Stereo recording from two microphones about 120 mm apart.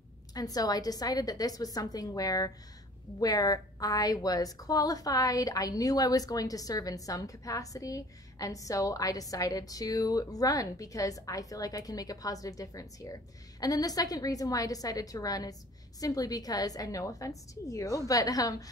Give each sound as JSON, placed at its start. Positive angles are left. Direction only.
{"t": 0.3, "sound": "a woman's voice", "side_deg": 30}